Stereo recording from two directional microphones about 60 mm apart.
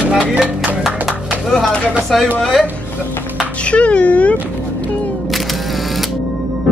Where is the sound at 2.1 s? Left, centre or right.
Centre.